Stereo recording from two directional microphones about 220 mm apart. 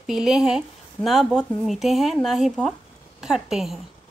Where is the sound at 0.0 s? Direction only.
Centre (ahead or behind).